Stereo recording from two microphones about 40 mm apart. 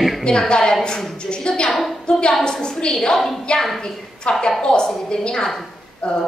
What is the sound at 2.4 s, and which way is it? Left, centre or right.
Speech, left.